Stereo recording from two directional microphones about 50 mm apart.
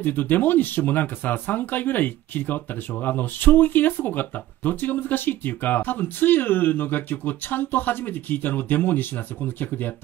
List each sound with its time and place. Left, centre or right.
0.0 s speech: left